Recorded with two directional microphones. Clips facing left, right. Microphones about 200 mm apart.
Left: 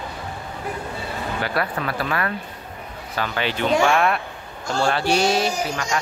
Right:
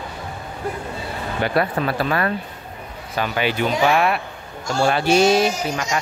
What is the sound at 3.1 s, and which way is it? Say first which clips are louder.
Speech: right 3 dB; 15° right (ahead or behind).